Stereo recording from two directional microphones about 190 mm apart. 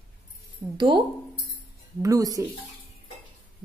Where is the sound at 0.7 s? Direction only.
25° right (ahead or behind).